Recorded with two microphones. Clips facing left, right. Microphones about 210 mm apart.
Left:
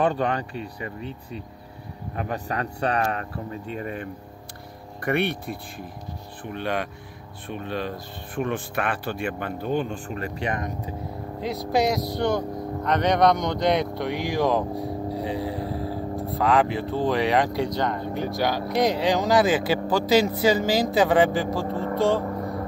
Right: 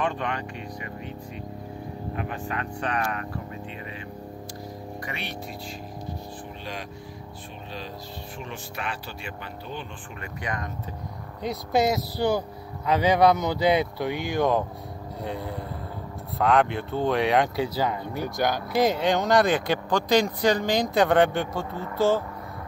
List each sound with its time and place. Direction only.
0.0 s speech: 35° left (ahead or behind); by 6.9 s 60° left (ahead or behind)
8.4 s speech: 55° left (ahead or behind); by 10.7 s 25° left (ahead or behind)
11.4 s speech: centre (ahead or behind)
21.6 s speech: 30° left (ahead or behind)
21.9 s speech: centre (ahead or behind)
22.2 s music: 45° left (ahead or behind)